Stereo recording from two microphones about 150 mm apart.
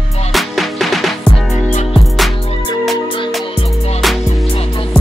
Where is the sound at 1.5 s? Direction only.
50° left (ahead or behind).